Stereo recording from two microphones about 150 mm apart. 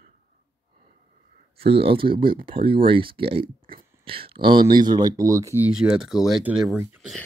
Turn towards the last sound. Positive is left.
turn(degrees=-5)  # may be behind; listen again after turning